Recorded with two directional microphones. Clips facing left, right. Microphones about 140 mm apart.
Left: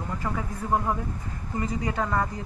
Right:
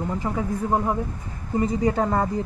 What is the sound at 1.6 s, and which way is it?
Speech, 35° right (ahead or behind).